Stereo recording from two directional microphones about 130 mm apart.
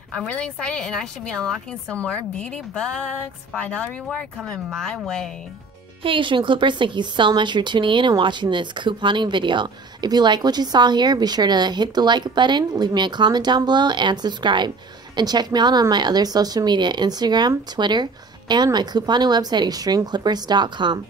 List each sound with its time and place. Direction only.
0.3 s a woman's voice: 10° left (ahead or behind)
6.0 s a woman's voice: 40° right (ahead or behind)